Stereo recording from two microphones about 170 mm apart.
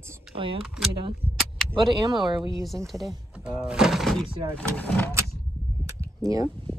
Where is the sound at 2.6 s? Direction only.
Centre (ahead or behind).